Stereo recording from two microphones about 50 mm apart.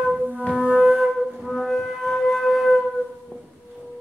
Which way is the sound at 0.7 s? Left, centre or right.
Centre.